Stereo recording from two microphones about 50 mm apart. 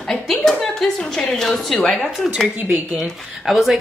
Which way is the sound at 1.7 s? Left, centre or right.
Centre.